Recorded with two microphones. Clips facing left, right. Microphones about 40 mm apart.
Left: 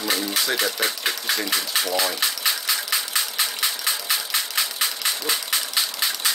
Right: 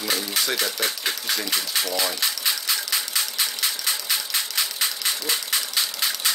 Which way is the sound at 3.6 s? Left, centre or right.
Centre.